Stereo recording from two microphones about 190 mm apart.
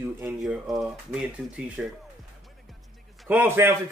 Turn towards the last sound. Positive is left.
turn(degrees=-10)  # may be behind; listen again after turning